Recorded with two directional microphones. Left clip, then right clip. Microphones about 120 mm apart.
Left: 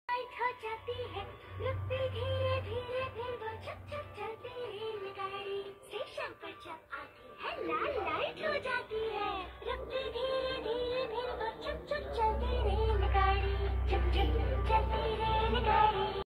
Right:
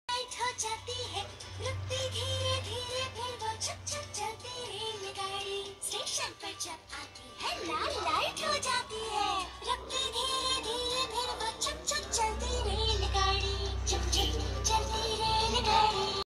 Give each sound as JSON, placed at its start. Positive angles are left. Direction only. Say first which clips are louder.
{"t": 0.7, "sound": "music", "louder": "right 2 dB", "side_deg": -25}
{"t": 5.9, "sound": "music", "louder": "right 7 dB", "side_deg": -30}
{"t": 7.4, "sound": "music", "louder": "right 1 dB", "side_deg": -40}
{"t": 8.0, "sound": "music", "louder": "right 3 dB", "side_deg": -70}
{"t": 12.6, "sound": "music", "louder": "right 1 dB", "side_deg": 10}